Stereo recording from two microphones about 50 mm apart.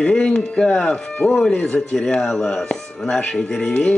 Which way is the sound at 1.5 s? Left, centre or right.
Left.